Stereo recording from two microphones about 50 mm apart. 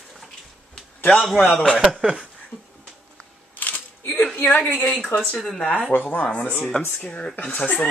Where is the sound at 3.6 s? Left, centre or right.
Left.